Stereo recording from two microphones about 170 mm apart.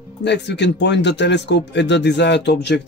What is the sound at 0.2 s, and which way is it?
Speech, 90° left.